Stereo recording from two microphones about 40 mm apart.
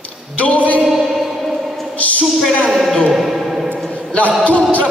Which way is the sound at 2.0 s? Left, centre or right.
Left.